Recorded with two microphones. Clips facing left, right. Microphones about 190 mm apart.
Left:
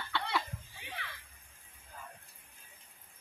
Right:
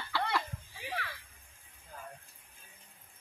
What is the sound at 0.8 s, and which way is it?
Neigh, 70° right (ahead or behind).